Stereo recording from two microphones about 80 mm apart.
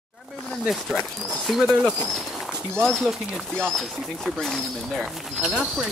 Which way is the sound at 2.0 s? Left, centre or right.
Centre.